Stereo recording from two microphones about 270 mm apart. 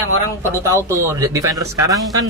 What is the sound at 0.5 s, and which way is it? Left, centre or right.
A man's voice, centre.